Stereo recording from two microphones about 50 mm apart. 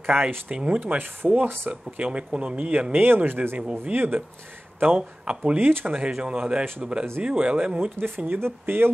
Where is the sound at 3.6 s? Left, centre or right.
Right.